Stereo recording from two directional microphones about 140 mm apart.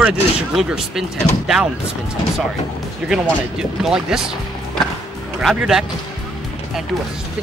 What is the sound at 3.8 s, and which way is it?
Speech, 5° right (ahead or behind).